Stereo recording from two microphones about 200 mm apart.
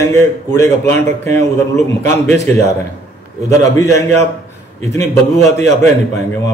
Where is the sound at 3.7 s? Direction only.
15° left (ahead or behind).